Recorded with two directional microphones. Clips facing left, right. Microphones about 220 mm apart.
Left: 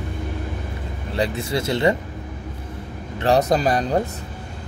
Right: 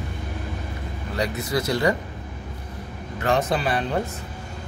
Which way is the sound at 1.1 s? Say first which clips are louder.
Left 2 dB; 30° left (ahead or behind).